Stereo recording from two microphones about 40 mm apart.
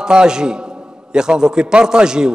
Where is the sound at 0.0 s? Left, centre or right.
Centre.